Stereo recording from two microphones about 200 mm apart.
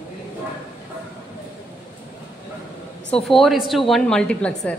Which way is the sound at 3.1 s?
Centre (ahead or behind).